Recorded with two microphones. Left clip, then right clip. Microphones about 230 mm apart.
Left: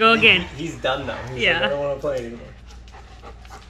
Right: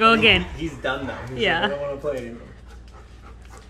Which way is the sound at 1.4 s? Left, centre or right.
Centre.